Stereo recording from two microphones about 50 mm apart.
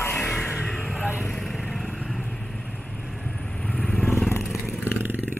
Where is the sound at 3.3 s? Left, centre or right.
Centre.